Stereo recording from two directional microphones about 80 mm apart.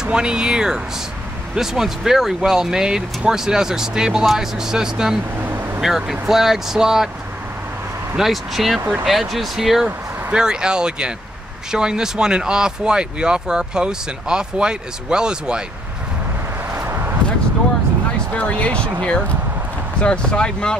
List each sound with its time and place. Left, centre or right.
0.0 s speech: centre
8.2 s speech: centre
16.7 s a sound: right
18.3 s speech: centre
20.0 s speech: centre